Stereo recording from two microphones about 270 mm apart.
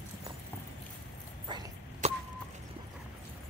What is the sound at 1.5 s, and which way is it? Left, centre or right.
Cough, centre.